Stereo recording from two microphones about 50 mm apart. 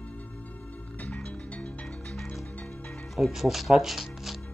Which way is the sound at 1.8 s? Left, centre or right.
Centre.